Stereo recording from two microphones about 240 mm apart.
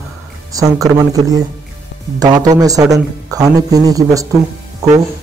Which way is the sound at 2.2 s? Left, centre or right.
Centre.